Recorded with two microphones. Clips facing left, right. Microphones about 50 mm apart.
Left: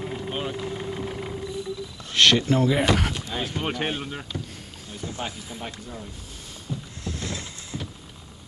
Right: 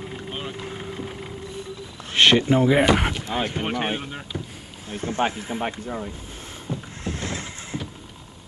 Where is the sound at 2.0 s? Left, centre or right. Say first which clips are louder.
Right 2 dB; right.